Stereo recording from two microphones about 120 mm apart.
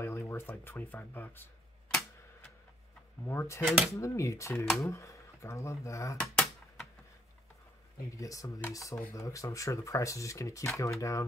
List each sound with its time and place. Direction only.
0.0 s speech: 20° left (ahead or behind)
3.3 s speech: 20° left (ahead or behind)
3.6 s speech: 10° right (ahead or behind)
4.0 s speech: 25° left (ahead or behind)
6.2 s typewriter: centre (ahead or behind)
8.2 s speech: 30° left (ahead or behind)